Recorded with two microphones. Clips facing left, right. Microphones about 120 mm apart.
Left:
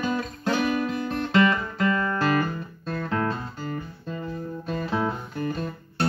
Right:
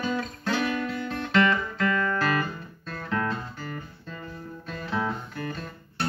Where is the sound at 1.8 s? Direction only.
30° left (ahead or behind).